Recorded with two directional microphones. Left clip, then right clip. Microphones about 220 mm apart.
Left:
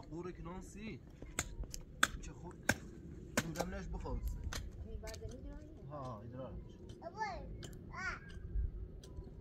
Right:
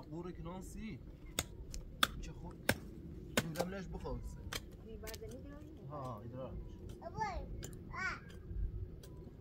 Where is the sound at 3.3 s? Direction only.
40° right (ahead or behind).